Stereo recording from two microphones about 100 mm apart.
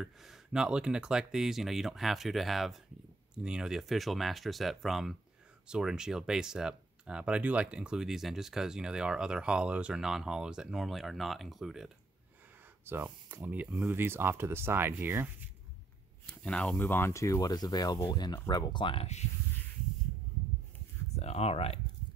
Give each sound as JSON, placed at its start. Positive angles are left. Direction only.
{"t": 0.0, "sound": "speech", "side_deg": -5}
{"t": 12.8, "sound": "speech", "side_deg": -20}
{"t": 16.3, "sound": "speech", "side_deg": 10}
{"t": 21.2, "sound": "speech", "side_deg": 90}